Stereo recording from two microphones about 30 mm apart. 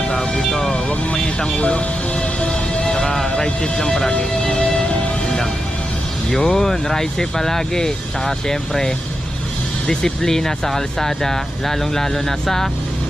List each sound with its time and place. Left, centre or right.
0.8 s vehicle: left
2.4 s music: left
3.3 s speech: left
4.6 s music: left
6.3 s speech: centre